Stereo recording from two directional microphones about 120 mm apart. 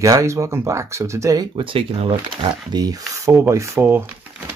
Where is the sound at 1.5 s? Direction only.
50° right (ahead or behind).